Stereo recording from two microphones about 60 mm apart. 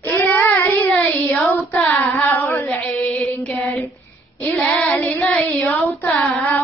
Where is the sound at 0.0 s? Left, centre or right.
Left.